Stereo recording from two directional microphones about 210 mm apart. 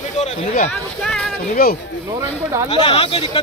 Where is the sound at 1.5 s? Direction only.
45° left (ahead or behind).